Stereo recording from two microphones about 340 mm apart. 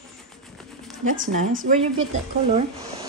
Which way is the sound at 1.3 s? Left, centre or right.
Right.